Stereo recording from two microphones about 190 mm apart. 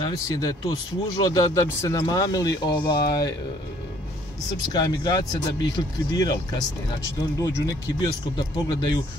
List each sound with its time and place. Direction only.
0.0 s speech: 20° left (ahead or behind)
4.7 s speech: 20° left (ahead or behind)